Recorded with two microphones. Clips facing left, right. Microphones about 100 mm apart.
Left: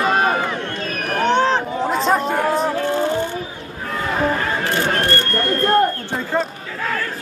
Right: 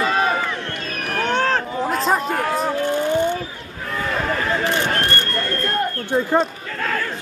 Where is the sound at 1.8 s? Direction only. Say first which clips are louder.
Left 2 dB; centre (ahead or behind).